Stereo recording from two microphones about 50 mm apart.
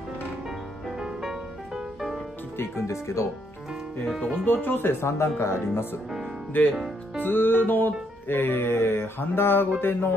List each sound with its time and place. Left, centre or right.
2.5 s speech: left
4.5 s music: left
6.5 s speech: left
7.2 s music: left